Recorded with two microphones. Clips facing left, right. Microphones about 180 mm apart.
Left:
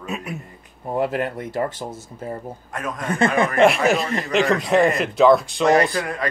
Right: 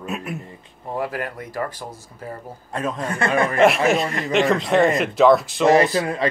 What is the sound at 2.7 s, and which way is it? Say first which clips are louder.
Speech: right 4 dB; 25° right (ahead or behind).